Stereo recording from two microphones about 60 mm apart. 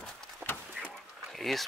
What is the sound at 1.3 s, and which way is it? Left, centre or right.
Speech, centre.